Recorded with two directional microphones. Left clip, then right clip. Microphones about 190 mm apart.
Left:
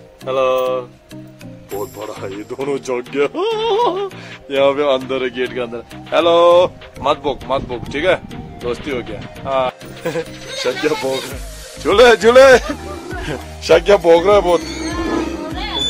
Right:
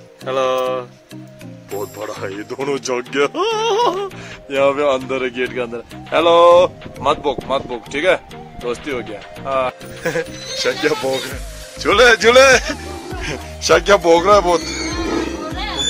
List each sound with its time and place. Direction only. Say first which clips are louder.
0.2 s speech: left 2 dB; 5° right (ahead or behind)
11.8 s a man's voice: left 1 dB; 15° left (ahead or behind)
12.2 s a man's voice: left 2 dB; 25° left (ahead or behind)
13.8 s speech: even; centre (ahead or behind)
15.4 s music: even; centre (ahead or behind)